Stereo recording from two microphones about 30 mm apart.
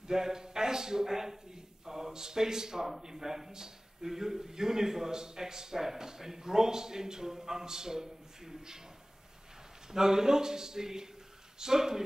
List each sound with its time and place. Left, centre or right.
0.0 s a man's voice: centre
9.8 s a man's voice: centre